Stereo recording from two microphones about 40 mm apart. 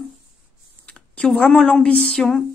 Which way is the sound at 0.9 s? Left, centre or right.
Left.